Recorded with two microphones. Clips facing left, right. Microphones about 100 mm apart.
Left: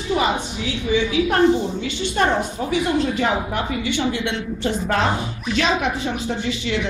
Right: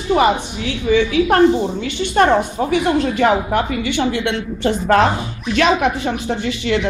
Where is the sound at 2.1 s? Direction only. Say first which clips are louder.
Right 7 dB; 60° right (ahead or behind).